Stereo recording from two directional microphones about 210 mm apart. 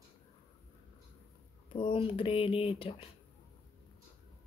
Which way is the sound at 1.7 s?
25° left (ahead or behind).